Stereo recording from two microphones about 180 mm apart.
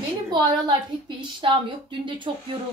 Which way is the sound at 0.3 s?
25° right (ahead or behind).